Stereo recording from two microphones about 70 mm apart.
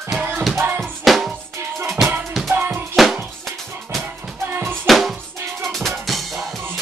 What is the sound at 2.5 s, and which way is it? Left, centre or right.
Music, right.